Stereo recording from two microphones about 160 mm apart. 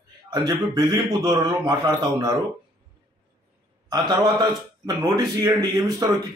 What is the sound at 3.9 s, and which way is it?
A man's voice, 25° right (ahead or behind).